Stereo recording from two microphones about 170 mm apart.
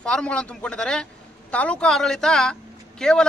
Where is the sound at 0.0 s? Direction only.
5° left (ahead or behind).